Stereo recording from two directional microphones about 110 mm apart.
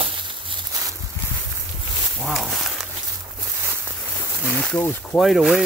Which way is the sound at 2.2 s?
Centre (ahead or behind).